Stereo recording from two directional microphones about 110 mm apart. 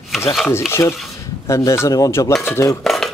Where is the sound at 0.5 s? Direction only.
20° left (ahead or behind).